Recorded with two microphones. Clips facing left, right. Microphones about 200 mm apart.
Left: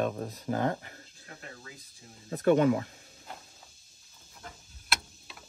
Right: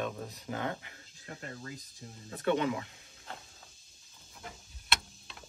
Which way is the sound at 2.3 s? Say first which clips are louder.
Left 7 dB; 45° left (ahead or behind).